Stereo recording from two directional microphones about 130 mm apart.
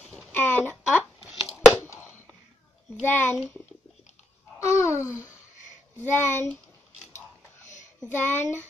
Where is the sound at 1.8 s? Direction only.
15° left (ahead or behind).